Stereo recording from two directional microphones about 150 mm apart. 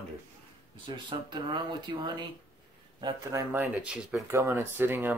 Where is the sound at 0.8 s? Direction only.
30° right (ahead or behind).